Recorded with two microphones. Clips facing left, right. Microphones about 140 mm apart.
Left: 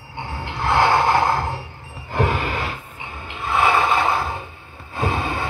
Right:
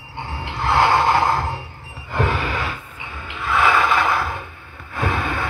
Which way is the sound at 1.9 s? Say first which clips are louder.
Left 1 dB; 40° left (ahead or behind).